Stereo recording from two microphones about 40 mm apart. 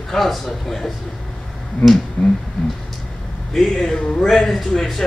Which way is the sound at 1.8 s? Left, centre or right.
Left.